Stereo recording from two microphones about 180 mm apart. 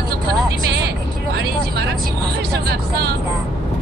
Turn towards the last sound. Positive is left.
turn(degrees=-65)  # may be behind; listen again after turning